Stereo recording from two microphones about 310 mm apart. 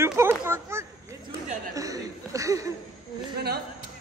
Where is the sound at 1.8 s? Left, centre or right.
Centre.